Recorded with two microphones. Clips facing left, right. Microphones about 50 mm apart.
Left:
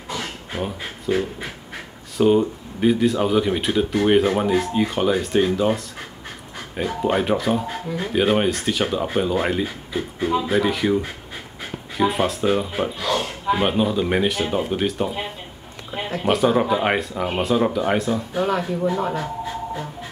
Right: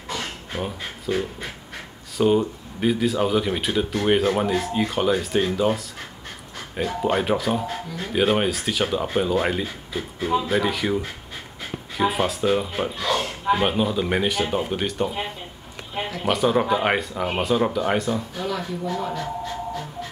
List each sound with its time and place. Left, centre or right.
0.1 s pant: centre
2.1 s speech: centre
6.8 s speech: centre
18.3 s speech: left
18.9 s a sound: left